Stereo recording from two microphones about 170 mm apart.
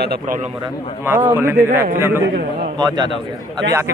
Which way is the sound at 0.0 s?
65° right (ahead or behind).